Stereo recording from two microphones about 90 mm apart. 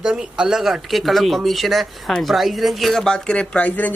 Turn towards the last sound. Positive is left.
turn(degrees=15)  # may be behind; listen again after turning